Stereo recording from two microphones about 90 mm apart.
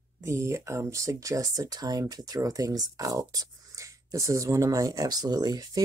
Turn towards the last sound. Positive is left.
turn(degrees=-45)  # may be behind; listen again after turning